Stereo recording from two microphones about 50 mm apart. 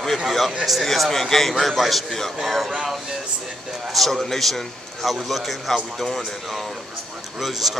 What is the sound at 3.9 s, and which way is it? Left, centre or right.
A man's voice, centre.